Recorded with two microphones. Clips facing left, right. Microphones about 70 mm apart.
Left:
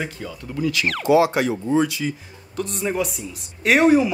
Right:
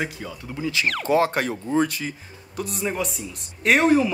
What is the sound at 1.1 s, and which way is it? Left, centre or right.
Speech, right.